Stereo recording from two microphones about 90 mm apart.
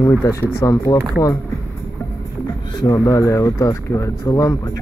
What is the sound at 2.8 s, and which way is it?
Speech, 40° left (ahead or behind).